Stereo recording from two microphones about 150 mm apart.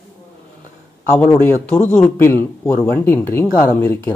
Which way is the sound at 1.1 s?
10° left (ahead or behind).